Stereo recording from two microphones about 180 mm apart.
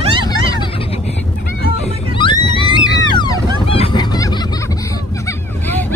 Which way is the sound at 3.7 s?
30° left (ahead or behind).